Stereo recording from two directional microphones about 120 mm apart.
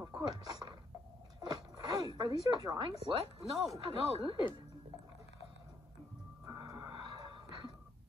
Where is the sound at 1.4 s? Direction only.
35° right (ahead or behind).